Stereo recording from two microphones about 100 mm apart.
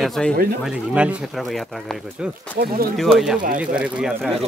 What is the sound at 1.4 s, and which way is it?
Speech, centre (ahead or behind).